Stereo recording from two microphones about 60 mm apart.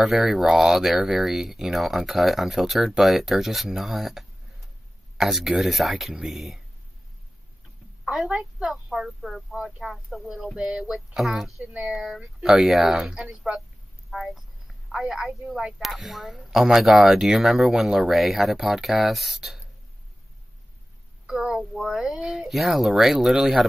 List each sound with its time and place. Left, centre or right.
0.0 s speech: centre
8.0 s a woman's voice: centre
8.8 s speech: centre
11.2 s speech: centre
12.9 s speech: centre
21.3 s speech: centre